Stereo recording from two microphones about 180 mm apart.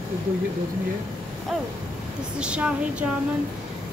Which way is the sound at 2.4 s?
5° right (ahead or behind).